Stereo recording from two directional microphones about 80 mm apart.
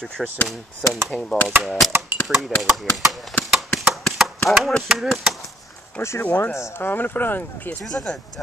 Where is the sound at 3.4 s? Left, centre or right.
Centre.